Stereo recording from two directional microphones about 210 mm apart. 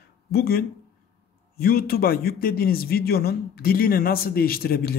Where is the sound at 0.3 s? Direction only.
45° left (ahead or behind).